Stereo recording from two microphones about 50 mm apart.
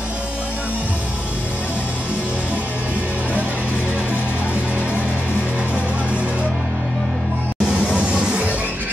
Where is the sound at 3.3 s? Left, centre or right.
Right.